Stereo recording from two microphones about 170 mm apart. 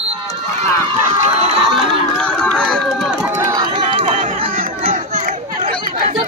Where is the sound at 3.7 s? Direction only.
30° right (ahead or behind).